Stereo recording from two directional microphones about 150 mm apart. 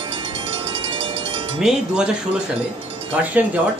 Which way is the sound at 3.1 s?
10° right (ahead or behind).